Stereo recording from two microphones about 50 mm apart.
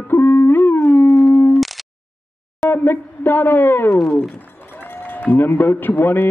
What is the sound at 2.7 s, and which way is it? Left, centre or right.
A man's voice, left.